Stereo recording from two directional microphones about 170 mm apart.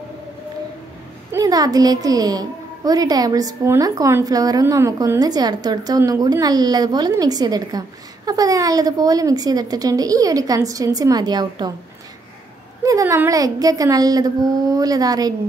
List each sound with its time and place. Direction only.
1.3 s a woman's voice: 20° right (ahead or behind)
12.8 s a woman's voice: 20° right (ahead or behind)